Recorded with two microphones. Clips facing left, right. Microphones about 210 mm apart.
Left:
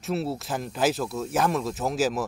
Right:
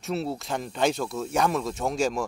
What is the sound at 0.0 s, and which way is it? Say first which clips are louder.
Speech: left 1 dB; centre (ahead or behind).